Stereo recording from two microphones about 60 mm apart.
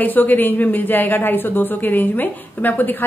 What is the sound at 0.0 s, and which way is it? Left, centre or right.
A woman's voice, left.